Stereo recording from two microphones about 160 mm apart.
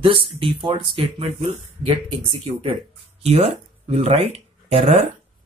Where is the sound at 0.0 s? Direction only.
35° right (ahead or behind).